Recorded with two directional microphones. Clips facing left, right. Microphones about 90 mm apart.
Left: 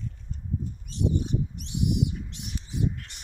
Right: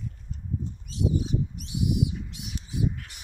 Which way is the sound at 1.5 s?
5° right (ahead or behind).